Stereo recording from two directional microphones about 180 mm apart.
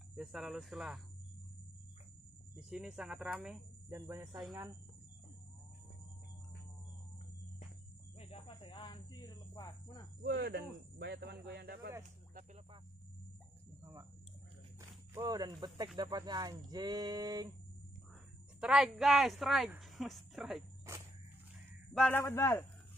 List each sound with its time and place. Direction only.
0.1 s speech: 5° right (ahead or behind)
2.7 s speech: 5° right (ahead or behind)
3.9 s speech: 15° right (ahead or behind)
8.2 s speech: 35° left (ahead or behind)
10.2 s speech: 65° right (ahead or behind)
14.8 s speech: 20° right (ahead or behind)
18.6 s speech: 5° right (ahead or behind)
21.9 s a man's voice: 5° left (ahead or behind)